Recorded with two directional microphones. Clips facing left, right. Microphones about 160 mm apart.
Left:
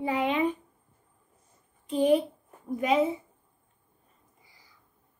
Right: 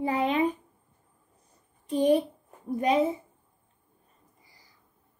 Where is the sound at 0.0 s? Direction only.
40° right (ahead or behind).